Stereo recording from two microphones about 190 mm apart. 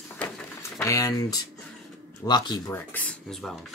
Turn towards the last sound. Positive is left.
turn(degrees=0)  # may be behind; listen again after turning